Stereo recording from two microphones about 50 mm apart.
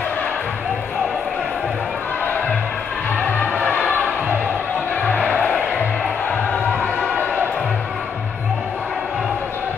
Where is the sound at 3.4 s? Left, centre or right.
Left.